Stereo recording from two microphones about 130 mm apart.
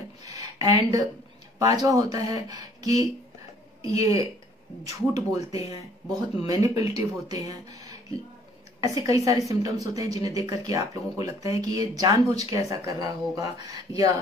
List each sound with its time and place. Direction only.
0.2 s a sound: 30° right (ahead or behind)
1.6 s speech: 25° right (ahead or behind)
5.5 s speech: 30° right (ahead or behind)